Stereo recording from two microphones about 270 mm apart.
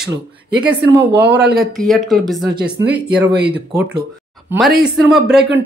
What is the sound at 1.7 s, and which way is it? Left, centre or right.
Speech, centre.